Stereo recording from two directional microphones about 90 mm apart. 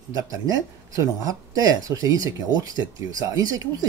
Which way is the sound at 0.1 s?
40° right (ahead or behind).